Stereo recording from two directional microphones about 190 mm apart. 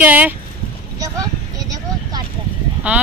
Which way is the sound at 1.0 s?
20° right (ahead or behind).